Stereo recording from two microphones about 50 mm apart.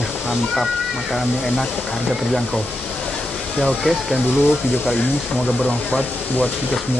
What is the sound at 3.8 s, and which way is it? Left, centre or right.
Speech, centre.